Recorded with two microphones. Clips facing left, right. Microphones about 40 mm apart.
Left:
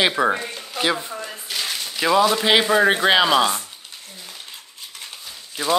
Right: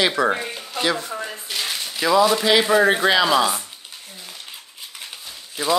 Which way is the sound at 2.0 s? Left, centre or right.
Centre.